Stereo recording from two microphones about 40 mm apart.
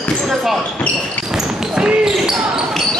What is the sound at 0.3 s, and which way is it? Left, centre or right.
Speech, centre.